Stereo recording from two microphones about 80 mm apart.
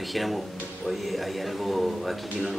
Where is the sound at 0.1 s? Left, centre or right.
Centre.